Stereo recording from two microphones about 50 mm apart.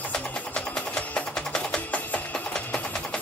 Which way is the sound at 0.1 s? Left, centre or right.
Centre.